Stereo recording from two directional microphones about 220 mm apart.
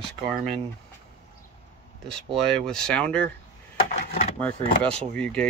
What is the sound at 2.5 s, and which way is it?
Speech, 5° left (ahead or behind).